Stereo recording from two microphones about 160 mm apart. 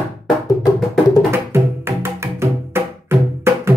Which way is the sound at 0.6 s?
Centre (ahead or behind).